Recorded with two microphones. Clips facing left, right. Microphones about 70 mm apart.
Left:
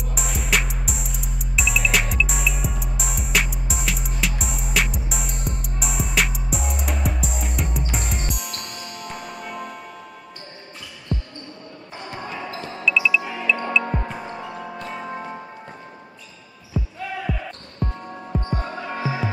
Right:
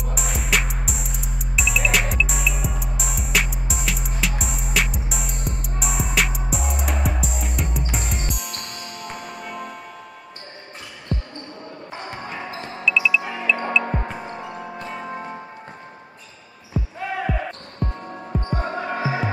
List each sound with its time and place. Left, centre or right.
0.0 s music: centre
12.3 s music: right
12.5 s music: centre
12.8 s music: centre
13.2 s music: centre
13.8 s basketball bounce: centre
14.3 s music: centre
16.8 s basketball bounce: centre
17.7 s music: centre
18.6 s basketball bounce: right
18.9 s music: centre